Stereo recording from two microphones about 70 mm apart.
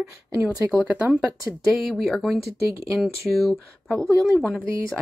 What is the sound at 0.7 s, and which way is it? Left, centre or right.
Speech, centre.